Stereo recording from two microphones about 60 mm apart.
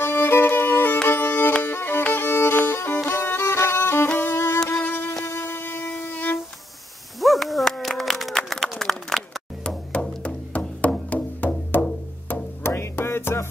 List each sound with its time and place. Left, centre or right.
0.0 s music: left
5.2 s violin: left
7.2 s a sound: centre
9.9 s music: left